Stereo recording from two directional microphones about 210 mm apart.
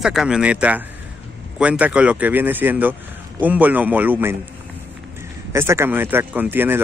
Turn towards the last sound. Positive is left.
turn(degrees=-10)  # may be behind; listen again after turning